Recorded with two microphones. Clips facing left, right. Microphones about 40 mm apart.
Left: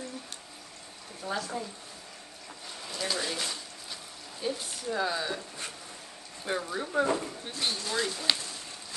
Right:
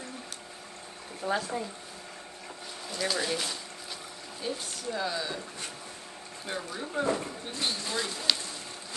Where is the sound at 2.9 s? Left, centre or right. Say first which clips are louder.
Right 2 dB; centre.